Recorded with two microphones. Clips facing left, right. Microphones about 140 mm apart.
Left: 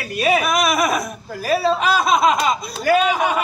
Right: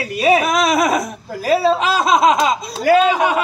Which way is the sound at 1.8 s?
90° right.